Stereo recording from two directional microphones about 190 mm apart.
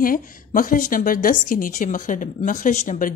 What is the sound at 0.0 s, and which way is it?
A woman's voice, 45° left (ahead or behind).